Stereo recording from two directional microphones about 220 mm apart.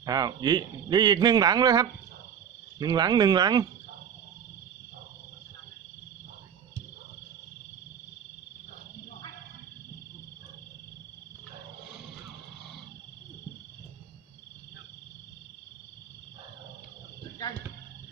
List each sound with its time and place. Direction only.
0.0 s speech: 15° right (ahead or behind)